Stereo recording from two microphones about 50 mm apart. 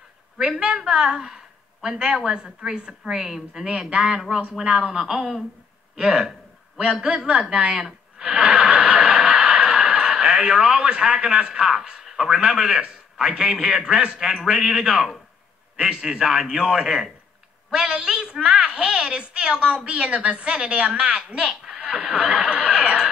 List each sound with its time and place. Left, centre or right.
0.5 s a woman's voice: centre
8.3 s snicker: right
9.3 s a woman's voice: centre
21.7 s a sound: right